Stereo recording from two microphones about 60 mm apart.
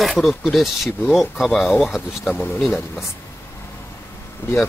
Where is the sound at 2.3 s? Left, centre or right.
Left.